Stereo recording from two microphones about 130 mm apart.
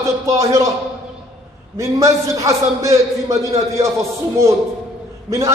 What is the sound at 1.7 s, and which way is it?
A man's voice, 25° right (ahead or behind).